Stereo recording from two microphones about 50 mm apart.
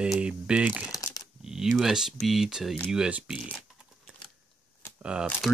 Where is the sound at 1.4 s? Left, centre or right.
Centre.